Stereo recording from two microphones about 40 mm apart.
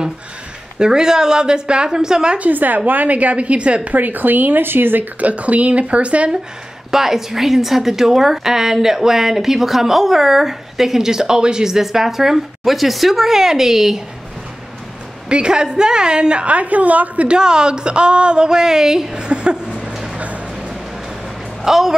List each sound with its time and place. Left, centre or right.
0.7 s speech: centre
2.5 s a woman's voice: right
3.9 s speech: right
5.2 s a woman's voice: right
6.9 s speech: centre
15.2 s a woman's voice: right
17.4 s a woman's voice: right
19.1 s a sound: right
20.2 s music: right
21.6 s speech: centre